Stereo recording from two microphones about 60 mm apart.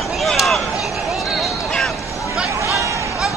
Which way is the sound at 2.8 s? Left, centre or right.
Right.